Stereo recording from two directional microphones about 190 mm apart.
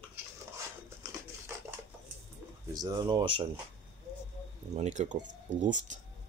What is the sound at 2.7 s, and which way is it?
Speech, 20° right (ahead or behind).